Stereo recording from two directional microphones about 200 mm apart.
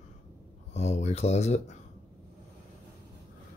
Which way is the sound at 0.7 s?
35° left (ahead or behind).